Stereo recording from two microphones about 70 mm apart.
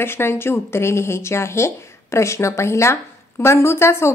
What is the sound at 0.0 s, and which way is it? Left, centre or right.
A woman's voice, left.